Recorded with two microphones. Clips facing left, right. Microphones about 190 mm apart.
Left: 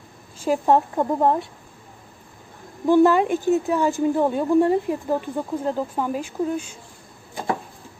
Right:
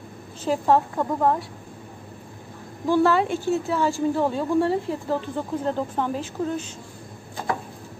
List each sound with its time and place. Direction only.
0.4 s a woman's voice: 15° left (ahead or behind)
2.9 s a woman's voice: 15° left (ahead or behind)